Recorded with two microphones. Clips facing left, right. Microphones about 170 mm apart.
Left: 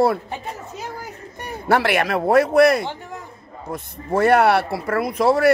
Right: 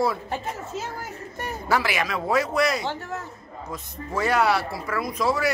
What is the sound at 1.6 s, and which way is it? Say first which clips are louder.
Speech: left 6 dB; 60° left (ahead or behind).